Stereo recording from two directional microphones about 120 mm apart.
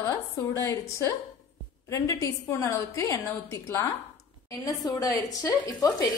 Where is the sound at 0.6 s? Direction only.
25° left (ahead or behind).